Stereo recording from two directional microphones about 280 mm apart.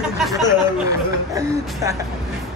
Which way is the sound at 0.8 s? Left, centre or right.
Centre.